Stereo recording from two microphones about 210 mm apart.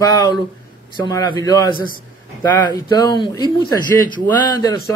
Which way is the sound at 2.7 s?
20° left (ahead or behind).